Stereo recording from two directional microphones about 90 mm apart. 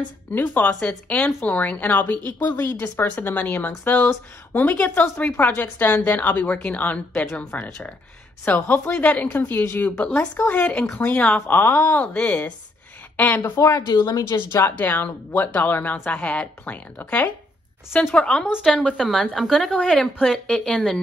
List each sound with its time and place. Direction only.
0.3 s speech: 20° left (ahead or behind)
13.4 s speech: 35° left (ahead or behind)
14.5 s speech: 25° left (ahead or behind)
18.1 s speech: 10° left (ahead or behind)